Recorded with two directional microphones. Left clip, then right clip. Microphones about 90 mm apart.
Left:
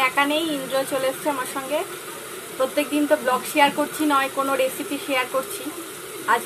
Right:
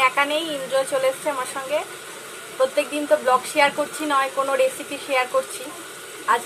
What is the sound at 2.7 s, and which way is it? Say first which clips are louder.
Speech: even; 10° left (ahead or behind).